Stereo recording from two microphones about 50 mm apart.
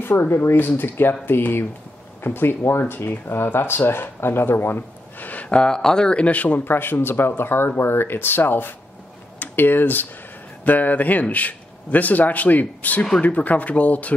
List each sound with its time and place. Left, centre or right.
0.3 s speech: left
5.3 s speech: left
6.2 s a man's voice: left